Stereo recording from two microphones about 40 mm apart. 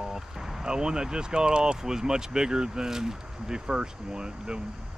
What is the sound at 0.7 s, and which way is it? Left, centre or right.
Speech, centre.